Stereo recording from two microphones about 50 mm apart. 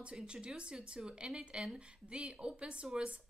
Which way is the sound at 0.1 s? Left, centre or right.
Centre.